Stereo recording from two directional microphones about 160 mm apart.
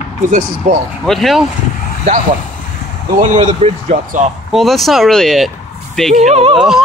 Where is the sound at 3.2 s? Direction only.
30° right (ahead or behind).